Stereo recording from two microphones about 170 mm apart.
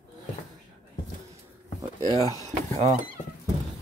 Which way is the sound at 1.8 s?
20° right (ahead or behind).